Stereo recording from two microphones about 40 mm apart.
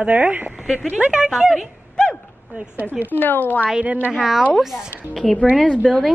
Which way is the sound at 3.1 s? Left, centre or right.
Left.